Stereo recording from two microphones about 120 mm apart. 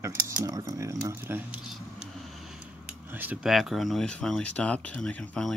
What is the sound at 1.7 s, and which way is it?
Vehicle, centre (ahead or behind).